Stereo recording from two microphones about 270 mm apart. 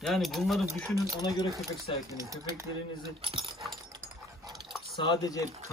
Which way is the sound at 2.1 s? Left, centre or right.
Centre.